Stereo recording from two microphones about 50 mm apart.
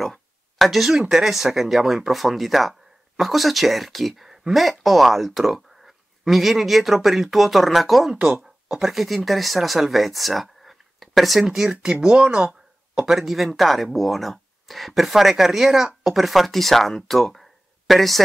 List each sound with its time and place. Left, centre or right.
0.0 s speech: centre
8.1 s speech: centre
8.6 s speech: centre